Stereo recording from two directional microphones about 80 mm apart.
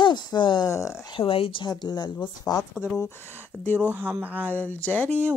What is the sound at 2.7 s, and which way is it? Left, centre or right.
Speech, centre.